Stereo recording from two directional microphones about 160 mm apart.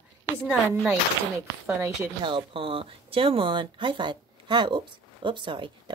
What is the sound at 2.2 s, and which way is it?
Speech, 30° right (ahead or behind).